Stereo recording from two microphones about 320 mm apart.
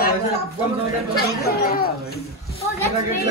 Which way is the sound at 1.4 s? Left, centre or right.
Left.